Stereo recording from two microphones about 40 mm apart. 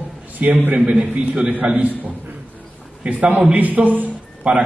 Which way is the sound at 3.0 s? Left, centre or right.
Right.